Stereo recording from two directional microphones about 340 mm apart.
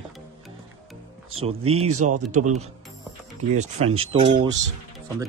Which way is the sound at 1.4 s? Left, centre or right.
Centre.